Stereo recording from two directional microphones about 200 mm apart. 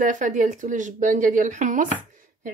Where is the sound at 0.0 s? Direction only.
40° right (ahead or behind).